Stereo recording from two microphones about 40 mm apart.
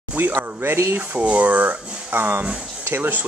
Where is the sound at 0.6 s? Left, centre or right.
Right.